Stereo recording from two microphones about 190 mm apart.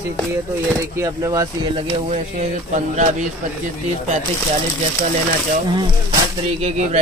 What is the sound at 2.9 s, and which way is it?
Speech, 40° right (ahead or behind).